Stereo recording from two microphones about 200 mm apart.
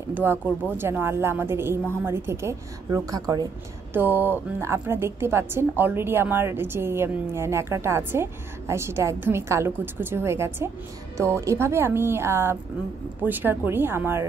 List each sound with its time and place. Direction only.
0.1 s a woman's voice: 10° right (ahead or behind)